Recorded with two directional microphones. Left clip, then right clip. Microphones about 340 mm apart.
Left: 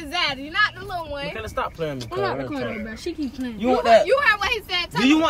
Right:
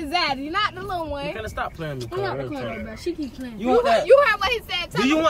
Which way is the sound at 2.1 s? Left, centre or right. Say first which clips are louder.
Left 2 dB; centre.